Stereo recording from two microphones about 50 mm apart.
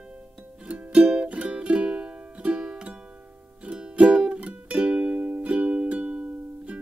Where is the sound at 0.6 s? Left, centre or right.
Right.